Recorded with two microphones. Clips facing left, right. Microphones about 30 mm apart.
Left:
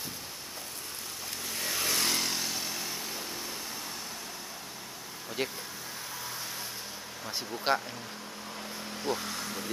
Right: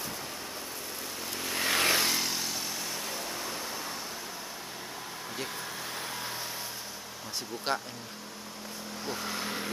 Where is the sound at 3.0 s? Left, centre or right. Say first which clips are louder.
Right 2 dB; centre.